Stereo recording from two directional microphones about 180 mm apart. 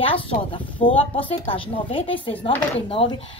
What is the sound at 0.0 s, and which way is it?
A woman's voice, 30° left (ahead or behind).